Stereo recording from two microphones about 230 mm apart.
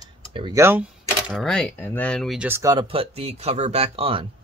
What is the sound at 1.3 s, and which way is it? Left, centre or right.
Speech, centre.